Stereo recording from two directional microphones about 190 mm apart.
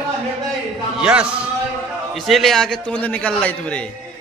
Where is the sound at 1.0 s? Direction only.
5° right (ahead or behind).